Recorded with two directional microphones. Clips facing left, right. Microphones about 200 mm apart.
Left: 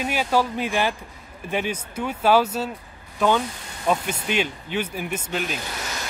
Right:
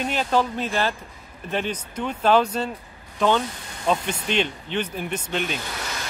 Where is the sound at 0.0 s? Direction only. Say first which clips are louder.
Even; 10° left (ahead or behind).